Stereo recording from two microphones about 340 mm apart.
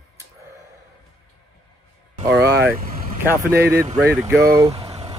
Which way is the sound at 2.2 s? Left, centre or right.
Centre.